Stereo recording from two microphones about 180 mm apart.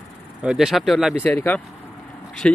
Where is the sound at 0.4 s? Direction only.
5° right (ahead or behind).